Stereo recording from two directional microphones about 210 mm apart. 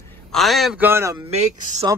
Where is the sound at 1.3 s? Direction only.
30° right (ahead or behind).